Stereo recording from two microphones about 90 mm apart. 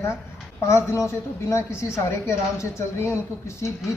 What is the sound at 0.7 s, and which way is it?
A woman's voice, 30° left (ahead or behind).